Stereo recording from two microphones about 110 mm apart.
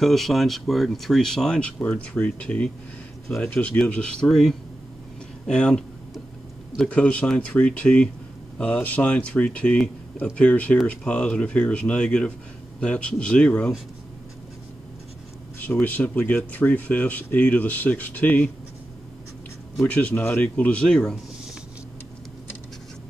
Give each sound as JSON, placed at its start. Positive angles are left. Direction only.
{"t": 0.0, "sound": "speech", "side_deg": 0}
{"t": 5.5, "sound": "a sound", "side_deg": 10}
{"t": 6.8, "sound": "speech", "side_deg": 10}
{"t": 15.6, "sound": "speech", "side_deg": 15}
{"t": 19.9, "sound": "speech", "side_deg": 15}